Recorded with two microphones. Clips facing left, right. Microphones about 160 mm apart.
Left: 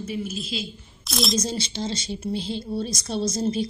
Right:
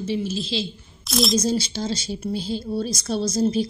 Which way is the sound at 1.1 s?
Centre (ahead or behind).